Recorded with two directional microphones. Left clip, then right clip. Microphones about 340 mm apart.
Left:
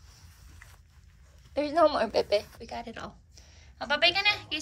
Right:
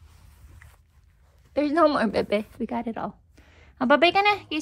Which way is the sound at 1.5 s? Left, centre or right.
Right.